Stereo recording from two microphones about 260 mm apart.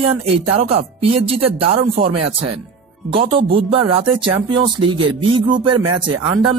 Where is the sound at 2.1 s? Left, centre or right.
Right.